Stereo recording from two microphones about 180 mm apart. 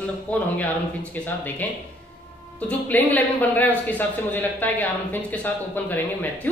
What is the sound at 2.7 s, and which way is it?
A man's voice, 10° left (ahead or behind).